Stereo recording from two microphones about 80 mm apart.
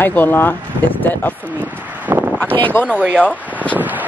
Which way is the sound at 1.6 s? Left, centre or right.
Right.